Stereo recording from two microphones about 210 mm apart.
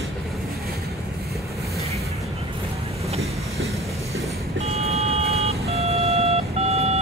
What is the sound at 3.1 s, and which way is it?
Vehicle, 30° right (ahead or behind).